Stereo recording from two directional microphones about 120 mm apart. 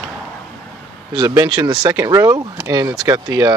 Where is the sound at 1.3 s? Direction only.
35° right (ahead or behind).